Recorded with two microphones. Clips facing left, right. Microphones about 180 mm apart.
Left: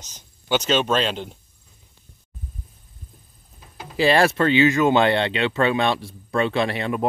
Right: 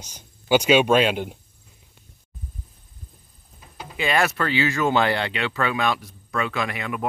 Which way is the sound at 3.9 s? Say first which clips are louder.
Left 5 dB; 30° left (ahead or behind).